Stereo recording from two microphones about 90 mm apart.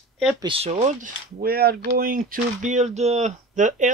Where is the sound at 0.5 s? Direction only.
85° right.